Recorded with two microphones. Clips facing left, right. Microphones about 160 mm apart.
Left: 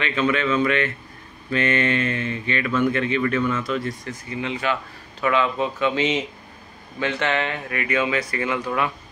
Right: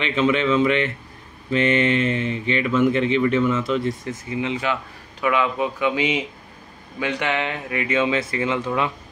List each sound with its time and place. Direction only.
0.0 s speech: 20° right (ahead or behind)